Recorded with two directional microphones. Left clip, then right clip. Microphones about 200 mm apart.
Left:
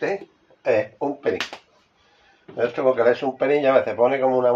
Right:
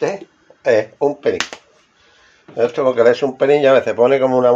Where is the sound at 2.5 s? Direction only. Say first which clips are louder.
Right 5 dB; 60° right (ahead or behind).